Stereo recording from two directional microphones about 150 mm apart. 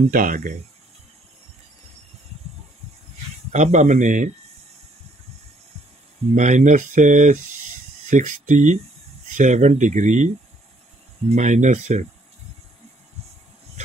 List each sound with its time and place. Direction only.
0.1 s speech: 65° right (ahead or behind)
3.5 s speech: 50° right (ahead or behind)
6.3 s speech: 55° right (ahead or behind)